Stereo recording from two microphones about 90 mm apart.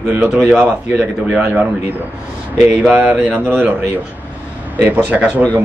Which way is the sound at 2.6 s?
10° right (ahead or behind).